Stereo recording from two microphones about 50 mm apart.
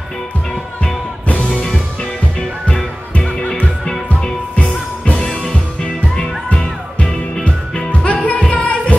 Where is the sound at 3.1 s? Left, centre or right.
Centre.